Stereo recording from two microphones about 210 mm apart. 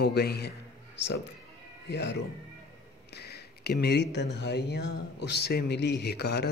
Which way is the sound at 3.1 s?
50° left (ahead or behind).